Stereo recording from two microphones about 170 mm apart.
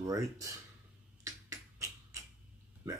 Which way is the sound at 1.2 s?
20° right (ahead or behind).